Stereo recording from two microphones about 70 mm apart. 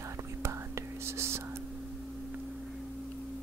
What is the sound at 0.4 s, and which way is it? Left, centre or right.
Whispering, right.